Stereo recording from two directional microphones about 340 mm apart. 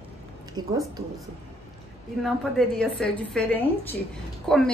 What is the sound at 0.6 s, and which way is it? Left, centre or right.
Speech, right.